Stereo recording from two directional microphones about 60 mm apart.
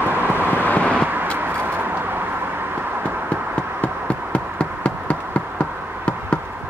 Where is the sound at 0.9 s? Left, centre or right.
Right.